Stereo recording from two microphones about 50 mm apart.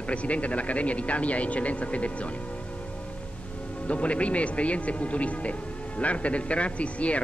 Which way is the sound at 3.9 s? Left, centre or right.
Left.